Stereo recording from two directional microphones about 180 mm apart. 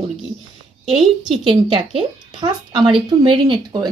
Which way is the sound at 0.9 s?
Centre (ahead or behind).